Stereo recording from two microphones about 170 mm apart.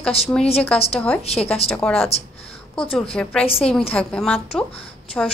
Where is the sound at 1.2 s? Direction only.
35° left (ahead or behind).